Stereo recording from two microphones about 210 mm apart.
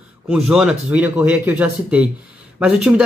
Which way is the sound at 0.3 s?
5° right (ahead or behind).